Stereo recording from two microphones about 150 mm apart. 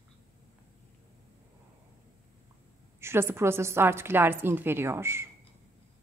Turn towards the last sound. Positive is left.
turn(degrees=-15)  # may be behind; listen again after turning